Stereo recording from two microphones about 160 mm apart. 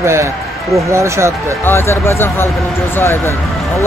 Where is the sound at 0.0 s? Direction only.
15° right (ahead or behind).